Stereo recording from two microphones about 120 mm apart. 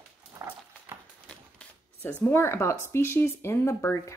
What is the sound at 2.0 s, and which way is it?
Speech, 15° left (ahead or behind).